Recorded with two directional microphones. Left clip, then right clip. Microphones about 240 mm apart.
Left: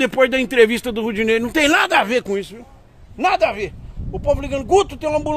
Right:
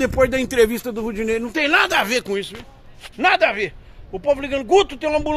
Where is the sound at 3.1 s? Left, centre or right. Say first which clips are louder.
Right 1 dB; centre.